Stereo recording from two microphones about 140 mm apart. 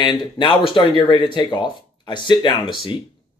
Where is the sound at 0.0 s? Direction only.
35° left (ahead or behind).